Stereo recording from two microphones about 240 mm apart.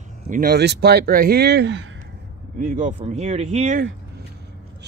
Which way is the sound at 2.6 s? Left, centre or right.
Right.